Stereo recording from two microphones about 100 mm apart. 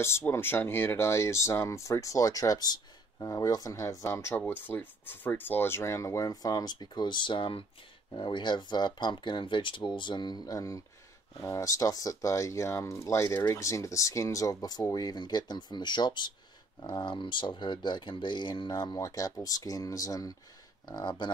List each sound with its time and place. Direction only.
0.3 s speech: 25° left (ahead or behind); by 18.9 s 45° left (ahead or behind)
18.9 s speech: 35° left (ahead or behind)
20.9 s speech: 50° left (ahead or behind)